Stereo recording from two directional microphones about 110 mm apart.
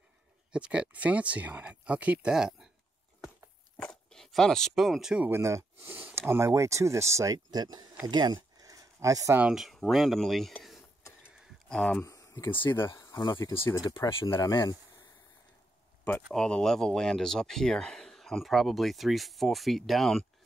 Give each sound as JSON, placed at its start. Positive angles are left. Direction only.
{"t": 0.5, "sound": "speech", "side_deg": -10}
{"t": 3.7, "sound": "speech", "side_deg": 5}
{"t": 5.2, "sound": "speech", "side_deg": -25}
{"t": 8.5, "sound": "a sound", "side_deg": -30}
{"t": 9.4, "sound": "speech", "side_deg": -5}
{"t": 12.0, "sound": "a sound", "side_deg": 30}
{"t": 12.7, "sound": "speech", "side_deg": 25}
{"t": 13.2, "sound": "speech", "side_deg": 45}
{"t": 13.9, "sound": "speech", "side_deg": 35}
{"t": 16.3, "sound": "speech", "side_deg": 5}